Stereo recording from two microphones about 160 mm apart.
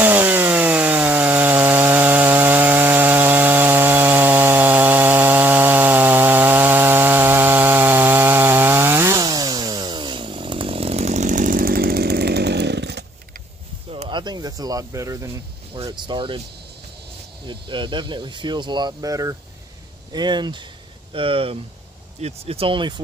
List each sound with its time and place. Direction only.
0.0 s chainsaw: 10° right (ahead or behind); by 13.0 s 90° right
13.8 s snake: 35° right (ahead or behind); by 15.2 s 20° right (ahead or behind)
15.8 s speech: 30° right (ahead or behind)
17.5 s speech: 30° right (ahead or behind)